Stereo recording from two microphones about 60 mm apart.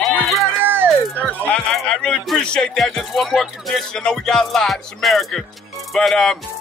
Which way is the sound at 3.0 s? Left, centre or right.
Centre.